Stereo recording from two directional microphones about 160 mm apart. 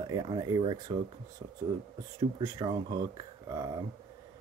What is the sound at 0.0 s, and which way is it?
Speech, 25° right (ahead or behind).